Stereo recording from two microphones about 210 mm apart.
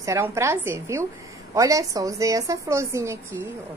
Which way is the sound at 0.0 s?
15° right (ahead or behind).